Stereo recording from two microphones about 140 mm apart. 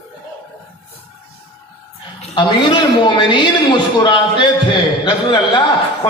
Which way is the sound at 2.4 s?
35° left (ahead or behind).